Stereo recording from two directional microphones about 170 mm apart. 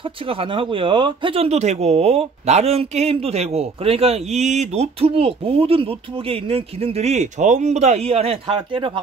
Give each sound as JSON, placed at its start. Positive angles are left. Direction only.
{"t": 0.3, "sound": "speech", "side_deg": -30}